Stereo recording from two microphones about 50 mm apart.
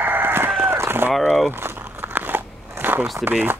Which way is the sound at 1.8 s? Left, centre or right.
Right.